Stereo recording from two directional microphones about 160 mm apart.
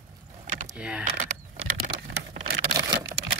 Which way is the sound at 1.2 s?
45° right (ahead or behind).